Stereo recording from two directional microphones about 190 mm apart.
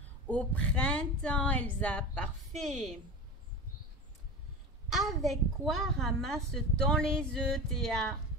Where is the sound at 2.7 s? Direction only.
40° right (ahead or behind).